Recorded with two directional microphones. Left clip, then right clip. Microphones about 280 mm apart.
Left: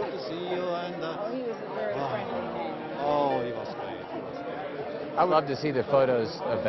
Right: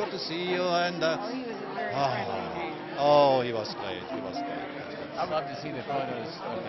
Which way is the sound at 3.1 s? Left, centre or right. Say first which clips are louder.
Right 5 dB; right.